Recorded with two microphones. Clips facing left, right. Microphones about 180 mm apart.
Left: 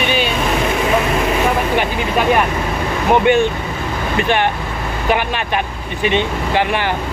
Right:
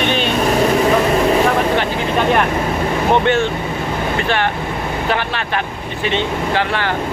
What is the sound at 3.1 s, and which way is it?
Speech, 15° left (ahead or behind).